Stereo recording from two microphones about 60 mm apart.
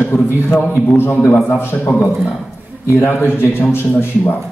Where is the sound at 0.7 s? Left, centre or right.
Left.